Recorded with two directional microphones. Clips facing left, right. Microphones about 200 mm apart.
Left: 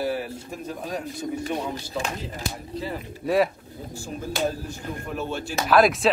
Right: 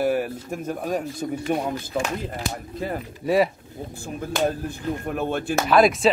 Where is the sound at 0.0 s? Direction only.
50° right (ahead or behind).